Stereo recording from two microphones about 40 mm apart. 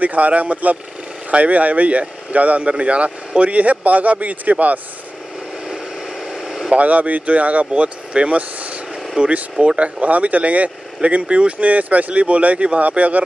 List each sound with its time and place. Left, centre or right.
0.0 s speech: right
6.3 s vehicle: centre
6.7 s speech: right